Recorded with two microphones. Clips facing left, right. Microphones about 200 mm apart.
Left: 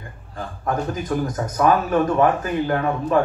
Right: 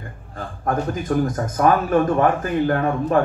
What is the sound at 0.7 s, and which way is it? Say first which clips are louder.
Speech: right 2 dB; 50° right (ahead or behind).